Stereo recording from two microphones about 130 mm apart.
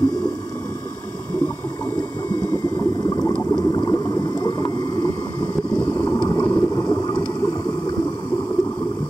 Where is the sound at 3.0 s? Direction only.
30° left (ahead or behind).